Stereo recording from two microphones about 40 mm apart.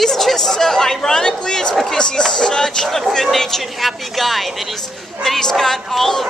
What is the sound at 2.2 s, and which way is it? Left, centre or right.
Music, centre.